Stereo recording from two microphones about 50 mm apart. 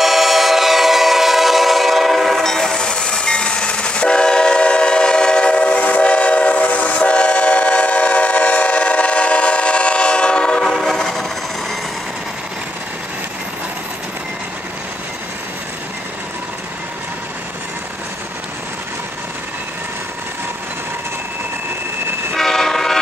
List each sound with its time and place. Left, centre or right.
0.0 s train: centre
2.4 s train: centre
22.3 s train: centre